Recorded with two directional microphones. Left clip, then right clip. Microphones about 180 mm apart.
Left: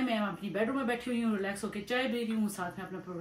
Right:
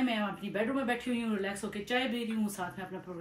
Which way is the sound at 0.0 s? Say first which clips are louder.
Even; centre (ahead or behind).